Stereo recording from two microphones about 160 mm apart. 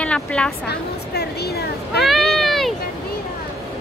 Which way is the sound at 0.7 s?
90° left.